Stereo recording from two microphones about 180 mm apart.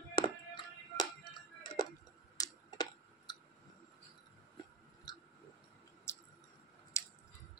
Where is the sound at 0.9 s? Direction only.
25° left (ahead or behind).